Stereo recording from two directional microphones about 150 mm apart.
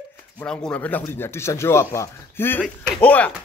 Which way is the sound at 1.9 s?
15° left (ahead or behind).